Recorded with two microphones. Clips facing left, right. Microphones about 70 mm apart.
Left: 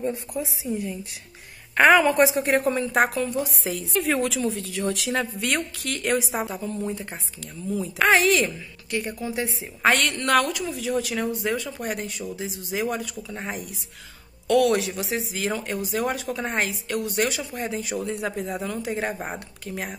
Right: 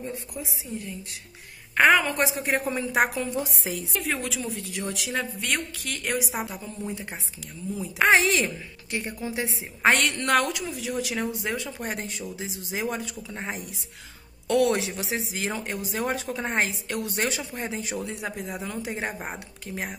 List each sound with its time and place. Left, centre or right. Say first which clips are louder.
0.4 s speech: left 7 dB; centre
4.0 s speech: left 8 dB; centre
7.7 s speech: left 1 dB; centre
8.1 s a woman's voice: left 2 dB; right